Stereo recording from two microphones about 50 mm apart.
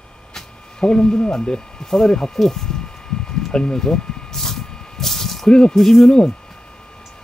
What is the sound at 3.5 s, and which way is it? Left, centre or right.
Vehicle, centre.